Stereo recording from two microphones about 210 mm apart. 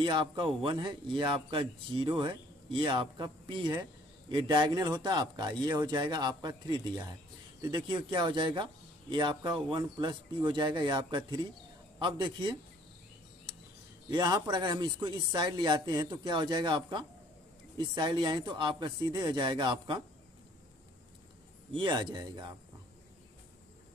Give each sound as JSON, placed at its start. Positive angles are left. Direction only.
{"t": 0.0, "sound": "a man's voice", "side_deg": -20}
{"t": 14.1, "sound": "a man's voice", "side_deg": -20}
{"t": 21.7, "sound": "a man's voice", "side_deg": -20}